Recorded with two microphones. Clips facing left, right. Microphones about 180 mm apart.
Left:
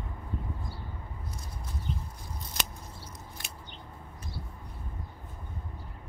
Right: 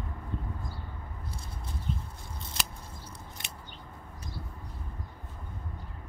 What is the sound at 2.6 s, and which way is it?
Scissors, 25° right (ahead or behind).